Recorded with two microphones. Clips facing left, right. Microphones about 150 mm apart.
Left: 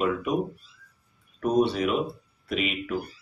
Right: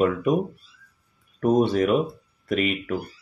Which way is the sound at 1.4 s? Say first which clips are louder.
Right 3 dB; 50° right (ahead or behind).